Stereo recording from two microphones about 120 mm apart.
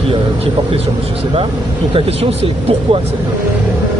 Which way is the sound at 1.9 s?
55° right (ahead or behind).